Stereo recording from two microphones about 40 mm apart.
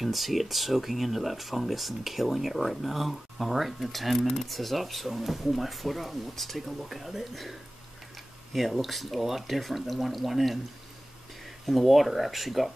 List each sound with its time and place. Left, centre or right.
0.0 s speech: centre
8.5 s speech: centre
11.6 s speech: centre